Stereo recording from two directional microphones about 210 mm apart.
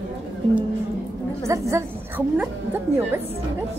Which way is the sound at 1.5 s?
15° right (ahead or behind).